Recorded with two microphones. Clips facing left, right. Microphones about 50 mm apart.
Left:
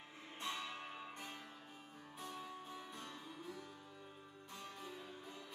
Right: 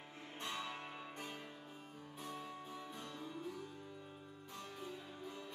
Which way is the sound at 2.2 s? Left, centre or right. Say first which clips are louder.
Right 1 dB; centre.